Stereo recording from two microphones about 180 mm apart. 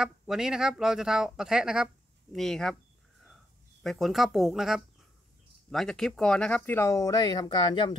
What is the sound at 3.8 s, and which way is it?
Speech, centre (ahead or behind).